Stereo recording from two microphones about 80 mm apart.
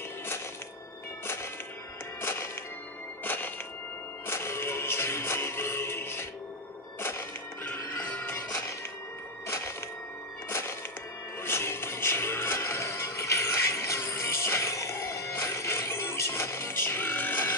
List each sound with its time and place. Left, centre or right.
1.2 s music: left
10.5 s music: left